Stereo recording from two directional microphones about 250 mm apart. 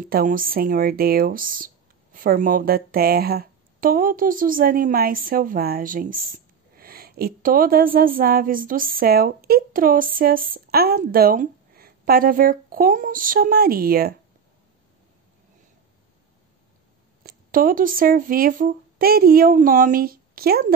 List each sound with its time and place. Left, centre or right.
0.0 s speech: right
17.2 s speech: right